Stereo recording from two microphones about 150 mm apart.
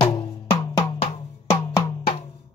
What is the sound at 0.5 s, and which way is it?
Music, 25° left (ahead or behind).